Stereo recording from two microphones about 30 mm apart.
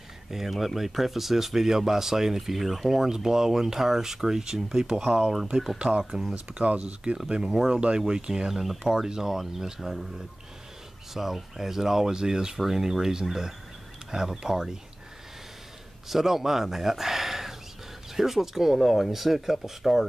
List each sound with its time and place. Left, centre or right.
0.5 s speech: centre; by 5.1 s right
5.2 s speech: centre
5.8 s speech: right
7.3 s speech: right
8.5 s speech: centre
11.3 s speech: centre
12.5 s speech: centre
16.1 s speech: centre
18.8 s speech: centre